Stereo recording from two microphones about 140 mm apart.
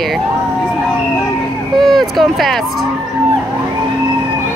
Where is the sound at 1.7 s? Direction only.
Centre (ahead or behind).